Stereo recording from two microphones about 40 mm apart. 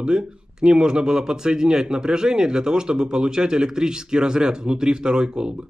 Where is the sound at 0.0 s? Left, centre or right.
Right.